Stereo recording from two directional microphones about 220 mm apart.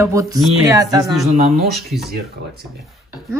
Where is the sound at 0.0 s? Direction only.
15° right (ahead or behind).